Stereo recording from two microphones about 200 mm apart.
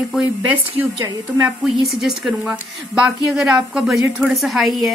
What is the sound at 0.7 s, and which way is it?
Speech, 10° right (ahead or behind).